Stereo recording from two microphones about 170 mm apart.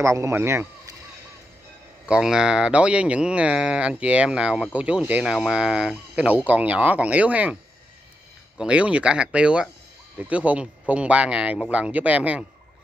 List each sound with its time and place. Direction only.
0.0 s speech: 15° right (ahead or behind)
2.0 s speech: 5° right (ahead or behind)
8.5 s speech: 5° right (ahead or behind)